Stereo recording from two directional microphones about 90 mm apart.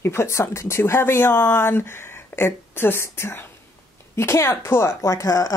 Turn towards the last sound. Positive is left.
turn(degrees=40)  # may be behind; listen again after turning